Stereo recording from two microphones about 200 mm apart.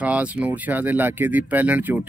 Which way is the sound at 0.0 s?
5° right (ahead or behind).